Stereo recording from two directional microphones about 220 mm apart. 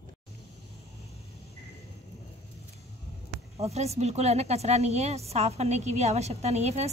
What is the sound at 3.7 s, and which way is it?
A woman's voice, 30° right (ahead or behind).